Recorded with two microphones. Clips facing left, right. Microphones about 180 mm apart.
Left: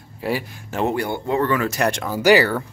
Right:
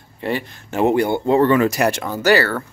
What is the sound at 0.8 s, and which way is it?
Speech, 20° right (ahead or behind).